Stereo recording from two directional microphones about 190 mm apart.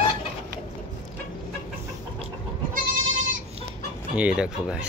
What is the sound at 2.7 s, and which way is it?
Goat, 45° right (ahead or behind).